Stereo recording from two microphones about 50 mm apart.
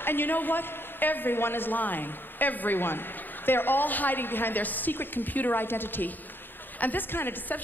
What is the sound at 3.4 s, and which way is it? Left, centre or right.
A woman's voice, left.